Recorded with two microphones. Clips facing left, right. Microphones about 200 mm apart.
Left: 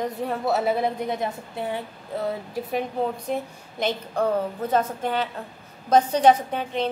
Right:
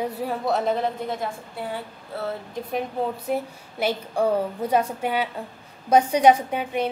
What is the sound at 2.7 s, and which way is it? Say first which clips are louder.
A woman's voice: even; 5° right (ahead or behind).